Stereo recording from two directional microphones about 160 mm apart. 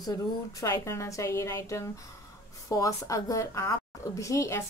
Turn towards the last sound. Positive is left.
turn(degrees=20)  # may be behind; listen again after turning